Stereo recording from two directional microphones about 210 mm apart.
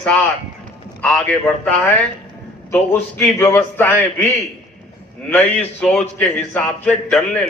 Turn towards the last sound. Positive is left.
turn(degrees=5)  # may be behind; listen again after turning